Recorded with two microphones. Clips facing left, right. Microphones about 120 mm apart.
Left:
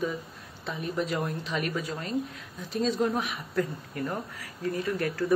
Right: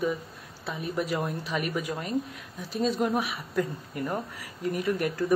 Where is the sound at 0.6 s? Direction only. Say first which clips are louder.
Even; 5° right (ahead or behind).